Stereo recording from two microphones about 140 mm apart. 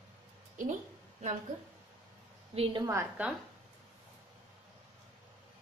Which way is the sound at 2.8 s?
20° right (ahead or behind).